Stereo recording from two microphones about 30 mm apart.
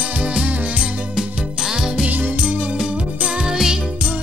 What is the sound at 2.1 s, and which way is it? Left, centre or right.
Music, right.